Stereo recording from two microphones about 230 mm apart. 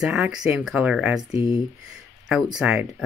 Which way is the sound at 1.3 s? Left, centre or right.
Left.